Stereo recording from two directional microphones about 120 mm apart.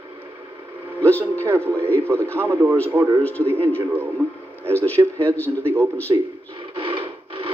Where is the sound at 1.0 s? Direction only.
15° left (ahead or behind).